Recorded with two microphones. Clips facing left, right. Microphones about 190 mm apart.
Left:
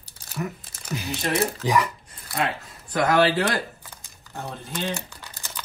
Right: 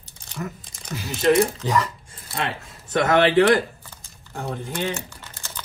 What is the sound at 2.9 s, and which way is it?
Speech, 25° right (ahead or behind).